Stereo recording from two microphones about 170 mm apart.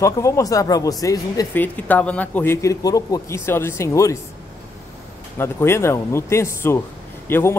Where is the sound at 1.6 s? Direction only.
10° left (ahead or behind).